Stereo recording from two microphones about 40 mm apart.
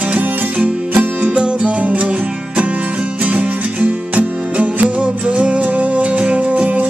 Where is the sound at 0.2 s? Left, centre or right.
Right.